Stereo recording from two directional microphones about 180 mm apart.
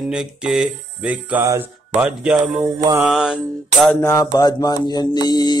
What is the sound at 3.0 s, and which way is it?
Music, 5° right (ahead or behind).